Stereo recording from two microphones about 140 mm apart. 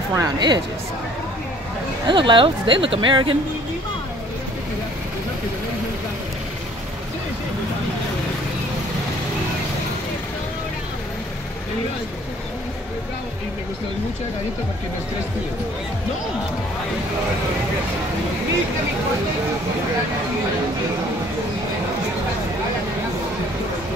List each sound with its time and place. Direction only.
0.1 s speech: 25° right (ahead or behind)
2.0 s speech: 35° right (ahead or behind)